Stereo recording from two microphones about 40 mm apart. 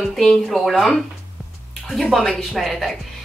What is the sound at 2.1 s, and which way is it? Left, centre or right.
Speech, centre.